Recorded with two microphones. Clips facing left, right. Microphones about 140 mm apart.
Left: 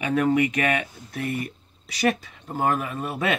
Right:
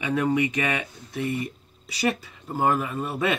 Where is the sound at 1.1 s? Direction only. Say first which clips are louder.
Right 1 dB; centre (ahead or behind).